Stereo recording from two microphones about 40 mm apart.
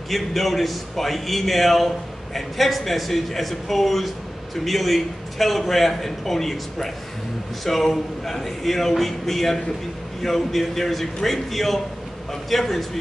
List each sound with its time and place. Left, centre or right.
0.1 s a man's voice: centre